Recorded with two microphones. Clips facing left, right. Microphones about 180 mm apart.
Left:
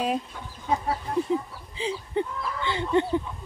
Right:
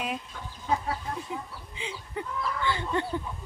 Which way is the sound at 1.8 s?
35° left (ahead or behind).